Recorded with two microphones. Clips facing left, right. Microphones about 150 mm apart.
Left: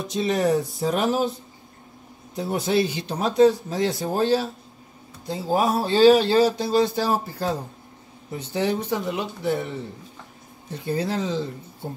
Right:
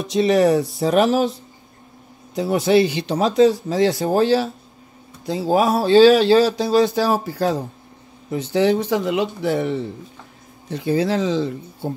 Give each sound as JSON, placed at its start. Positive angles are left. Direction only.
{"t": 0.0, "sound": "speech", "side_deg": -80}
{"t": 2.3, "sound": "speech", "side_deg": -90}